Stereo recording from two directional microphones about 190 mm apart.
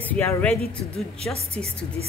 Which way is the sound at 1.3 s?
30° right (ahead or behind).